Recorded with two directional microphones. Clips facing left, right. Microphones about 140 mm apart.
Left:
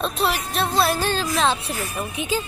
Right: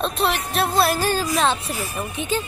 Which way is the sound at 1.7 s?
35° right (ahead or behind).